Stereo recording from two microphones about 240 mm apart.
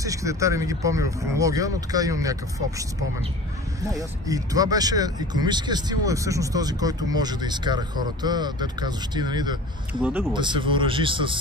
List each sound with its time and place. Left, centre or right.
0.0 s speech: centre
3.9 s speech: centre
10.0 s speech: centre
10.3 s speech: centre